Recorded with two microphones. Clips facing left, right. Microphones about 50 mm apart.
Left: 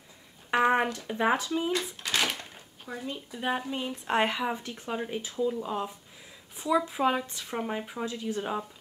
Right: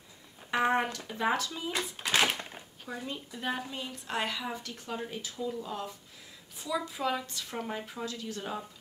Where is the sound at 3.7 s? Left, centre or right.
Left.